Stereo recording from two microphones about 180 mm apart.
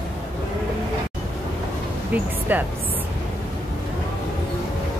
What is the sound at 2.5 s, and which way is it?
Speech, 10° right (ahead or behind).